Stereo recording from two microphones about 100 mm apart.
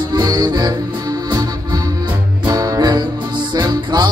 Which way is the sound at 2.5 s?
35° right (ahead or behind).